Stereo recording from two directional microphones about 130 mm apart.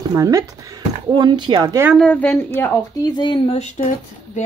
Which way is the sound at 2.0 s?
10° left (ahead or behind).